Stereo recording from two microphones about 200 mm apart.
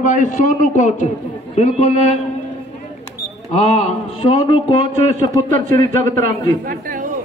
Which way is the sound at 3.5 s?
35° left (ahead or behind).